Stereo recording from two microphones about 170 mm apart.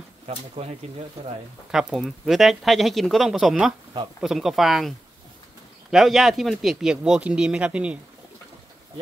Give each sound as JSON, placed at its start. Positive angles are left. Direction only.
{"t": 0.6, "sound": "speech", "side_deg": -35}
{"t": 1.7, "sound": "speech", "side_deg": -5}